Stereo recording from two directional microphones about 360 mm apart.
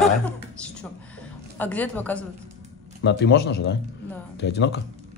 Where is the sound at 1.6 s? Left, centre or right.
Centre.